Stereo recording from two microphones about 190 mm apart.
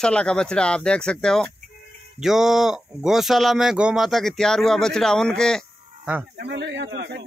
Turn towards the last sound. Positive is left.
turn(degrees=-60)  # may be behind; listen again after turning